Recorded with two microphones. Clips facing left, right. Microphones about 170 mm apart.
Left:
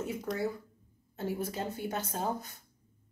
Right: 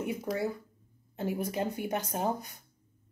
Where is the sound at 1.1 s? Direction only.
15° right (ahead or behind).